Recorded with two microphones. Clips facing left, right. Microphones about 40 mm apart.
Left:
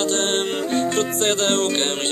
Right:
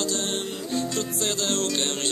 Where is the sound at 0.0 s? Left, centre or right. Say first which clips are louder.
Left 7 dB; left.